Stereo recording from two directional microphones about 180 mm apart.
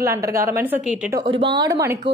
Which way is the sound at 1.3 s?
30° right (ahead or behind).